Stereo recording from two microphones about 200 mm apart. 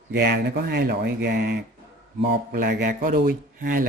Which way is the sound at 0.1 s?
55° right (ahead or behind).